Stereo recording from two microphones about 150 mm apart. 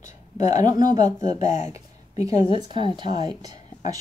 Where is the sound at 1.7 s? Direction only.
20° right (ahead or behind).